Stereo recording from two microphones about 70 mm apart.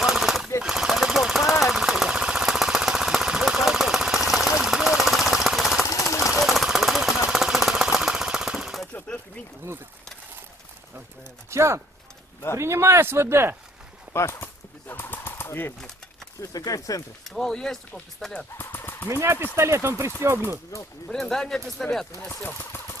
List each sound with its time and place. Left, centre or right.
0.0 s machine gun: centre
0.6 s jackhammer: centre
5.9 s a sound: left
6.4 s jackhammer: centre
11.5 s a sound: right
12.5 s speech: right
14.1 s a sound: left
16.3 s speech: left
17.3 s speech: centre
18.6 s a sound: left
19.0 s speech: right
21.1 s speech: centre
22.4 s speech: left